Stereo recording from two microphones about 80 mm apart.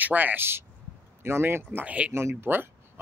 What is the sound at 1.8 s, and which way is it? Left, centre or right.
Speech, centre.